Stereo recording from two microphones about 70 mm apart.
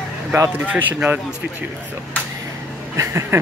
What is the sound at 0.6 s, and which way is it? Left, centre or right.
Speech, right.